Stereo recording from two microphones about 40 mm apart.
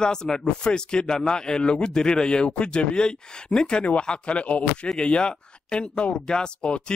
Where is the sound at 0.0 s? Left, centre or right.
Centre.